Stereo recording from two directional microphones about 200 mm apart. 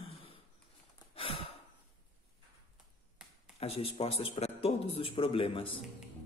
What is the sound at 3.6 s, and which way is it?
Speech, 30° left (ahead or behind).